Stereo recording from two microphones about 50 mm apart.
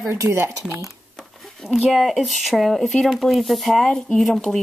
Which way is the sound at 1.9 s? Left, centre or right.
Centre.